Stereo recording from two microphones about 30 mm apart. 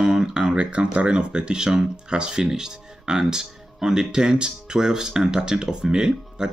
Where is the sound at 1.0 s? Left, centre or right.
Right.